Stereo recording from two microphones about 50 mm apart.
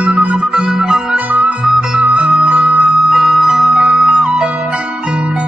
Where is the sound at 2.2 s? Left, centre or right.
Right.